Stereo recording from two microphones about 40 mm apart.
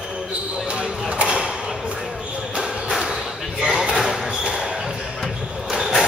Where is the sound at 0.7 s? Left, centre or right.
Right.